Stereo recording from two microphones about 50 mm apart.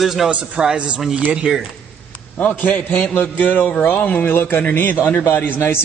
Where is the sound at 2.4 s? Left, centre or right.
Left.